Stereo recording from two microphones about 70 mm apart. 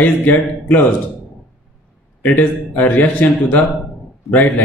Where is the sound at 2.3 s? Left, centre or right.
Left.